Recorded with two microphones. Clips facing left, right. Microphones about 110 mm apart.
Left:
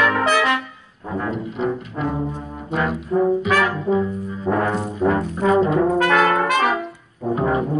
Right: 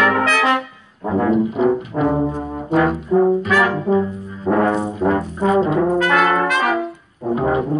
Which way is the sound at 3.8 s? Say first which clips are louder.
Right 2 dB; 25° right (ahead or behind).